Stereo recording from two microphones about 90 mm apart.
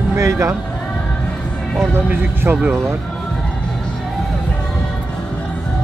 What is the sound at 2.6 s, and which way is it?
Speech, 25° right (ahead or behind).